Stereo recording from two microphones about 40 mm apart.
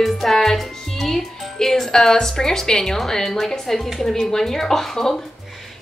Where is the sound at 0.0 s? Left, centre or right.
Centre.